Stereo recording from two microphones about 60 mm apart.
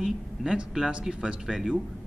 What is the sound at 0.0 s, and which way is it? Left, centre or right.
A man's voice, centre.